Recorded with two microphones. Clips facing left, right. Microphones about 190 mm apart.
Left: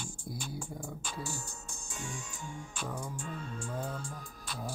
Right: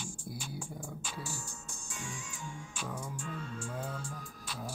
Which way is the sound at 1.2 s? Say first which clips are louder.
Left 2 dB; 40° left (ahead or behind).